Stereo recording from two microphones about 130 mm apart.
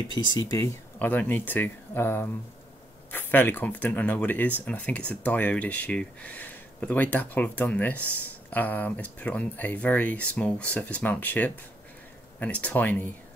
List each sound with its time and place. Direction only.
0.1 s speech: 30° left (ahead or behind)
0.9 s speech: 15° left (ahead or behind)